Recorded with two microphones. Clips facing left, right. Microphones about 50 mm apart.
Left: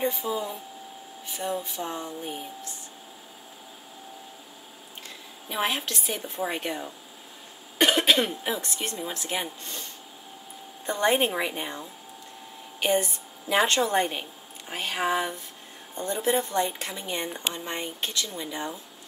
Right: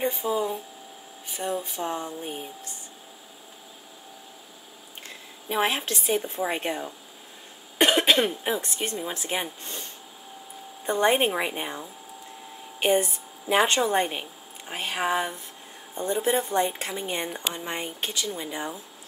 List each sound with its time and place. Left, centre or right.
0.3 s speech: centre
1.4 s speech: right
2.1 s speech: centre
5.5 s speech: centre
7.8 s a woman's voice: centre